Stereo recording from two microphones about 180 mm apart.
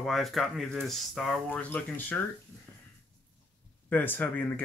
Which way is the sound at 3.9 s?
10° left (ahead or behind).